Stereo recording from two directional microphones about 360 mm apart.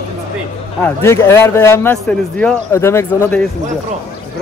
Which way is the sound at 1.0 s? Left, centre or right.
Centre.